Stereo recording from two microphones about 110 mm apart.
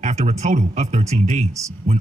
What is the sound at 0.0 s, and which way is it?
A man's voice, 90° right.